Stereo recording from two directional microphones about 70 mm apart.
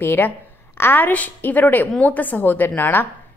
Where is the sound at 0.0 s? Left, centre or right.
Left.